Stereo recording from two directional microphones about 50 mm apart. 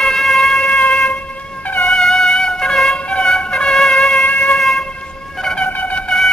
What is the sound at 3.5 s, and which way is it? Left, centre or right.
Trumpet, centre.